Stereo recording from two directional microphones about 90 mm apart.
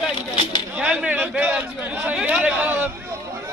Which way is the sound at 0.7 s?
10° right (ahead or behind).